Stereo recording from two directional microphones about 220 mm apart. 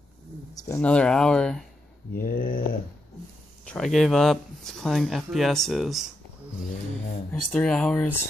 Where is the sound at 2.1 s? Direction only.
40° left (ahead or behind).